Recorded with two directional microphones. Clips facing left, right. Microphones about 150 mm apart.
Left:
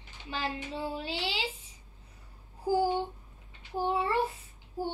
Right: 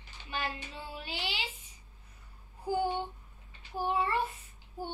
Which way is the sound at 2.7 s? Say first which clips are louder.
Left 4 dB; 30° left (ahead or behind).